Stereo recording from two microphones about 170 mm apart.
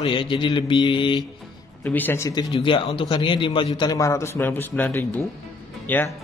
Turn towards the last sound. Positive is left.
turn(degrees=10)  # may be behind; listen again after turning